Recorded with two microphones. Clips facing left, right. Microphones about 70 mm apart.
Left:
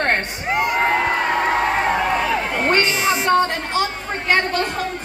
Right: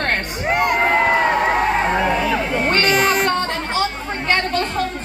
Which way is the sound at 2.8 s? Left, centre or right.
Right.